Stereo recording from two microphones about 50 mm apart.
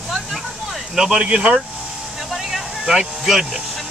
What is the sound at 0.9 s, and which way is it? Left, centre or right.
Speech, centre.